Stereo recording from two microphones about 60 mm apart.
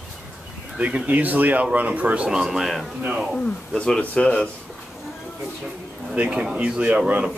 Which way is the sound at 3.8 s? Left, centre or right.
Centre.